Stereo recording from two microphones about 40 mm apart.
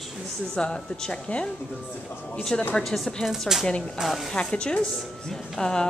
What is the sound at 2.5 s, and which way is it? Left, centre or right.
A woman's voice, centre.